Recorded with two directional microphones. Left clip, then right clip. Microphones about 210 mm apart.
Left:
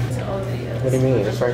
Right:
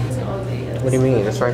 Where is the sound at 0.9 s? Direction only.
20° right (ahead or behind).